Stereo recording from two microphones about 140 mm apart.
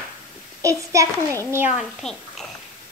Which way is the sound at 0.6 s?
20° right (ahead or behind).